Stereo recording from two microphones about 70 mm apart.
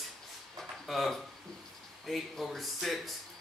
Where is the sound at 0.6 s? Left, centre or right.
Centre.